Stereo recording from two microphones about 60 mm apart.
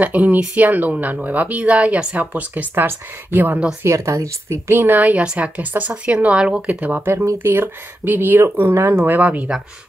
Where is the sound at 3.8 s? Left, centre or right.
Right.